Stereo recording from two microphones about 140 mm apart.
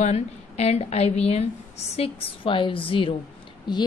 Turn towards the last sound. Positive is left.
turn(degrees=30)  # may be behind; listen again after turning